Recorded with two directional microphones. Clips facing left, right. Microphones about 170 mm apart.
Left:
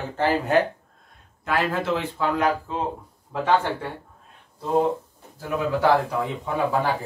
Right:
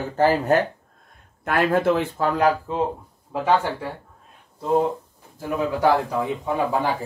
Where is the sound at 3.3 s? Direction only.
10° right (ahead or behind).